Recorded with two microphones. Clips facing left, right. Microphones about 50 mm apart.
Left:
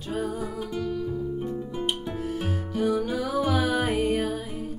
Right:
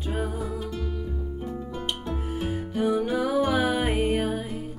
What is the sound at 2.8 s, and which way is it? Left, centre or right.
Music, right.